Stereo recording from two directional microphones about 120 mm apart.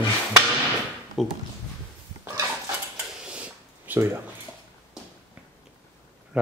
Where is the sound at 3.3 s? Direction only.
10° right (ahead or behind).